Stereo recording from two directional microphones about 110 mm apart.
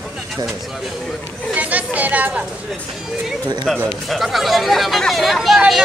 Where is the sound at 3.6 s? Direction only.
Centre (ahead or behind).